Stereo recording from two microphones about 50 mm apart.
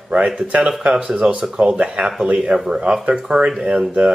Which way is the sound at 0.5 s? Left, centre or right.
Centre.